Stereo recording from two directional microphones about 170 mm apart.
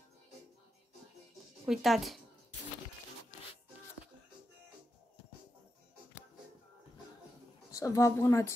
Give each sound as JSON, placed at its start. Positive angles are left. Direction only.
{"t": 1.7, "sound": "speech", "side_deg": 0}
{"t": 7.7, "sound": "speech", "side_deg": 20}